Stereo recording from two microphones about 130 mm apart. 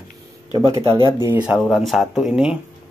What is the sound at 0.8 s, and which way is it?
Speech, 45° right (ahead or behind).